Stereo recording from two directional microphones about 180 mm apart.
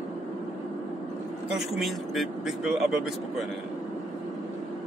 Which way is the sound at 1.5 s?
Centre (ahead or behind).